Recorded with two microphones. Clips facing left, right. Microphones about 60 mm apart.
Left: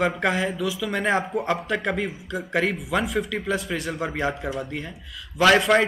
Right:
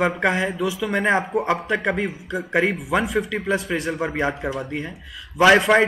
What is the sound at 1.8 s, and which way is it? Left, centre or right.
Speech, centre.